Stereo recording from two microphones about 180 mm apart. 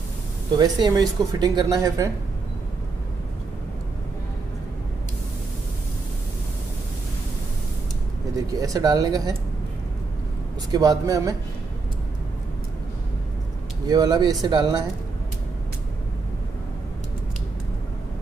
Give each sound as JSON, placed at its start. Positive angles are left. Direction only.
{"t": 0.6, "sound": "speech", "side_deg": -20}
{"t": 8.5, "sound": "speech", "side_deg": -20}
{"t": 10.7, "sound": "speech", "side_deg": -20}
{"t": 13.8, "sound": "speech", "side_deg": -20}